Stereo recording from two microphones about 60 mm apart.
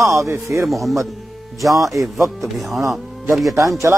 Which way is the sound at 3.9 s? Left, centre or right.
Right.